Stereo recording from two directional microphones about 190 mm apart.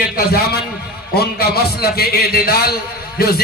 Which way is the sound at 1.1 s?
55° left (ahead or behind).